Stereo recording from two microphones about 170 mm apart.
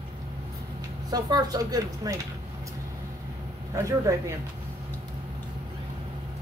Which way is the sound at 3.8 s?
20° right (ahead or behind).